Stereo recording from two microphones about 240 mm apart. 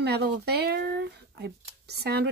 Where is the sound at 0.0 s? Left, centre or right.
Right.